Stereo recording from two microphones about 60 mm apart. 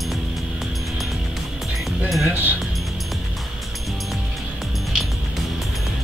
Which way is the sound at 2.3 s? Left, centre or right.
Right.